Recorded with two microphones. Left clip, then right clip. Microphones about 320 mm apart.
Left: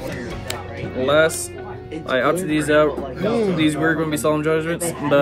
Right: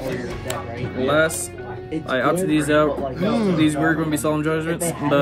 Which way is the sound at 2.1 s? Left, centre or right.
Centre.